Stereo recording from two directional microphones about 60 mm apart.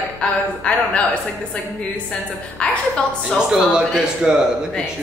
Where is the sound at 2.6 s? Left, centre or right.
Centre.